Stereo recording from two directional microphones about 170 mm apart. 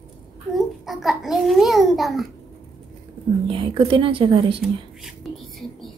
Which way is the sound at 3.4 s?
30° right (ahead or behind).